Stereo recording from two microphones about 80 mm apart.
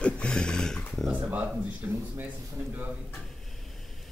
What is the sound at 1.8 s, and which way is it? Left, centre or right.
Speech, right.